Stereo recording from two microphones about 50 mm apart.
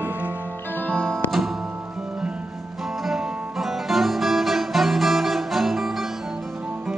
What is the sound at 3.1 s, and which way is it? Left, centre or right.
Music, centre.